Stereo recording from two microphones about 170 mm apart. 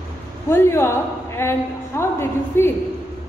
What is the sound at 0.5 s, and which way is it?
A woman's voice, 15° left (ahead or behind).